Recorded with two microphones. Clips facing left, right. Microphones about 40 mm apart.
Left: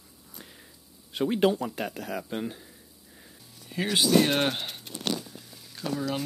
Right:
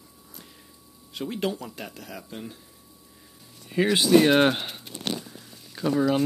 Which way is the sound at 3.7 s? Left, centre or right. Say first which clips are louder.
Right 4 dB; centre.